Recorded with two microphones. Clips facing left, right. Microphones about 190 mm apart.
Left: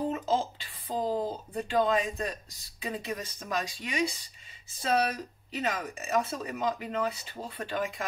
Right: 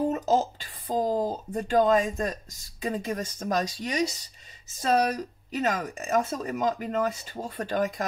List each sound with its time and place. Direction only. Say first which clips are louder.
0.1 s speech: right 5 dB; 40° right (ahead or behind)
5.5 s speech: right 5 dB; 45° right (ahead or behind)